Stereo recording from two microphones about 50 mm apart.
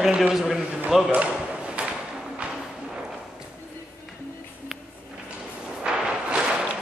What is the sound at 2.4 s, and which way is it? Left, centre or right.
Music, right.